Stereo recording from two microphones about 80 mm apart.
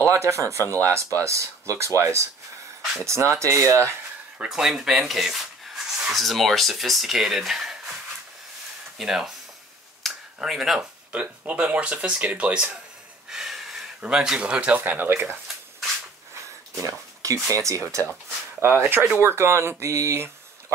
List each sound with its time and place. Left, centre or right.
0.0 s speech: right
4.4 s speech: centre
8.9 s speech: centre
10.0 s a sound: centre
11.1 s speech: centre
13.3 s a sound: centre
14.0 s speech: centre; by 15.3 s right
16.8 s speech: right
18.6 s speech: right